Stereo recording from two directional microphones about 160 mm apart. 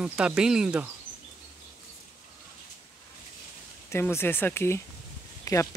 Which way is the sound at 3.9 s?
15° left (ahead or behind).